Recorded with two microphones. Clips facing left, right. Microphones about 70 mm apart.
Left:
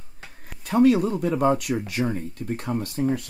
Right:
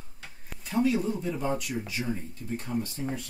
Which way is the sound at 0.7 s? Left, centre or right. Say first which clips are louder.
Left 8 dB; left.